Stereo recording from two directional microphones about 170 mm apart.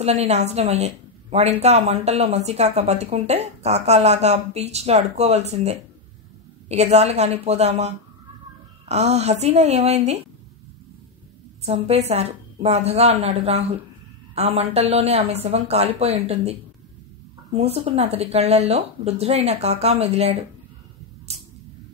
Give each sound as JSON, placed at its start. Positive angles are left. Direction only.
{"t": 0.0, "sound": "a woman's voice", "side_deg": -40}
{"t": 11.6, "sound": "a woman's voice", "side_deg": -40}
{"t": 17.6, "sound": "a woman's voice", "side_deg": -35}